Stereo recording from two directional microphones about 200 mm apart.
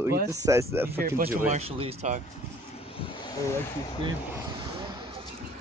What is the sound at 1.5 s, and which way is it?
Speech, 30° right (ahead or behind).